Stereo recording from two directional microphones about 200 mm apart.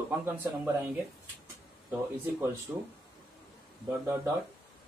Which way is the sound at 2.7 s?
10° right (ahead or behind).